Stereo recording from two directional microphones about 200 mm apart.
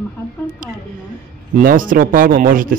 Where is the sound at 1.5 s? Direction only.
45° right (ahead or behind).